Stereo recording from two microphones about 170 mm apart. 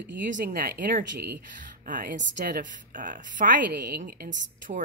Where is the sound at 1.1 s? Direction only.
85° right.